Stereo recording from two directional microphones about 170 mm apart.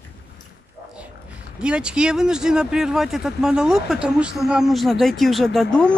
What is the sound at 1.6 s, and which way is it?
Speech, 5° right (ahead or behind).